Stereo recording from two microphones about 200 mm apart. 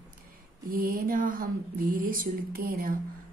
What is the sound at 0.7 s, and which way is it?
Speech, 50° right (ahead or behind).